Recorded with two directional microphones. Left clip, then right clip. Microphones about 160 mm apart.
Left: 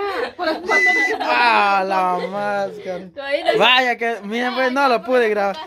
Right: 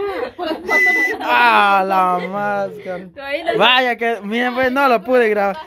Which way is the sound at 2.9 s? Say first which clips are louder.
Left 1 dB; 20° left (ahead or behind).